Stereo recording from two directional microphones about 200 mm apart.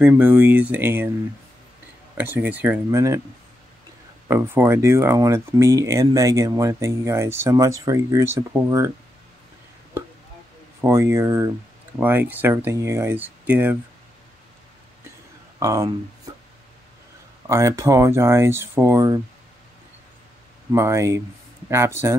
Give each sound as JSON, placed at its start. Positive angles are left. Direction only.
{"t": 0.0, "sound": "speech", "side_deg": -10}
{"t": 2.1, "sound": "speech", "side_deg": -10}
{"t": 4.3, "sound": "speech", "side_deg": -15}
{"t": 10.8, "sound": "speech", "side_deg": -15}
{"t": 15.6, "sound": "speech", "side_deg": -15}
{"t": 17.5, "sound": "speech", "side_deg": -15}
{"t": 20.7, "sound": "speech", "side_deg": -15}